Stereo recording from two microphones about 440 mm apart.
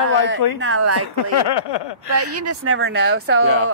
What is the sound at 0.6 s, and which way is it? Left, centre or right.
Speech, right.